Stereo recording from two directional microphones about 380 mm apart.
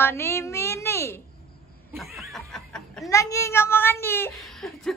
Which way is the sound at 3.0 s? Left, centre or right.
Centre.